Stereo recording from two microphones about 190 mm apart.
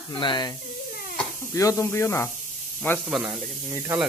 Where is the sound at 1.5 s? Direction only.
15° left (ahead or behind).